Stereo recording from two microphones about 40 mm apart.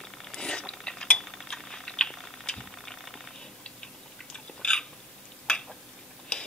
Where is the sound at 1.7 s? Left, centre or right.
Centre.